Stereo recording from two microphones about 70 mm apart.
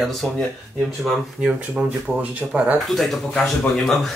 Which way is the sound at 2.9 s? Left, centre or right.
Centre.